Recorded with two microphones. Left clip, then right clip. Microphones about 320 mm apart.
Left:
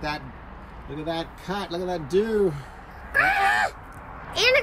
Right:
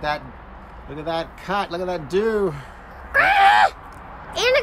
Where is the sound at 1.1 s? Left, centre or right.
Centre.